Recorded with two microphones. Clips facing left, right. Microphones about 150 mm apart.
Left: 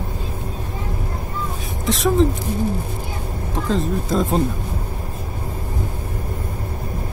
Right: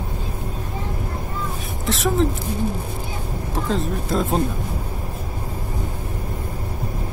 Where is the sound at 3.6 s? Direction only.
Centre (ahead or behind).